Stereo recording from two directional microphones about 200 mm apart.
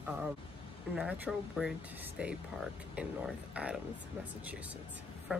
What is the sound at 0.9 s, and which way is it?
Speech, 5° right (ahead or behind).